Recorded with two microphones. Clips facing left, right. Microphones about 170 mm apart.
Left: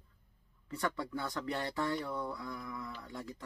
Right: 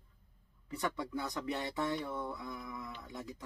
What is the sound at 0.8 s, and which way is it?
Speech, 20° right (ahead or behind).